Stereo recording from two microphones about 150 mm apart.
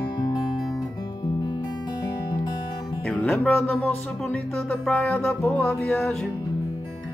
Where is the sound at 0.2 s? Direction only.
25° left (ahead or behind).